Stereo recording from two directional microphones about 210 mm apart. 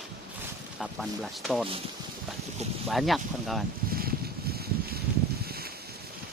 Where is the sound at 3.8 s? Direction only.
45° right (ahead or behind).